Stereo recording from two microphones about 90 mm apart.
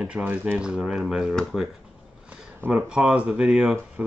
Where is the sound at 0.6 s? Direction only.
10° right (ahead or behind).